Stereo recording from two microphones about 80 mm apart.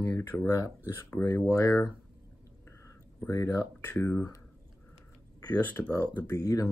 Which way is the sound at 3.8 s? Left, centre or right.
Left.